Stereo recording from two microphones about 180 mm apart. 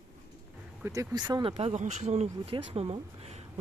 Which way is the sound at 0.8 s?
20° right (ahead or behind).